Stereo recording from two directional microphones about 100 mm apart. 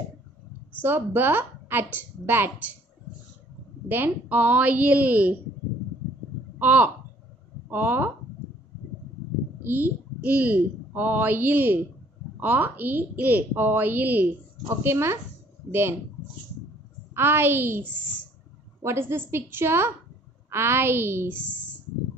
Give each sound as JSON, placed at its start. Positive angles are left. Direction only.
{"t": 0.7, "sound": "a woman's voice", "side_deg": -20}
{"t": 3.9, "sound": "a woman's voice", "side_deg": -20}
{"t": 6.6, "sound": "a woman's voice", "side_deg": -15}
{"t": 9.6, "sound": "a woman's voice", "side_deg": -20}
{"t": 17.1, "sound": "a woman's voice", "side_deg": -20}